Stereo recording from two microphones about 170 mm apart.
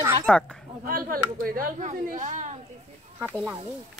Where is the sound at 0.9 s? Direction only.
55° right (ahead or behind).